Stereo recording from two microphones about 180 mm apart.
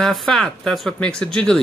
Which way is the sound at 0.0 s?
Centre (ahead or behind).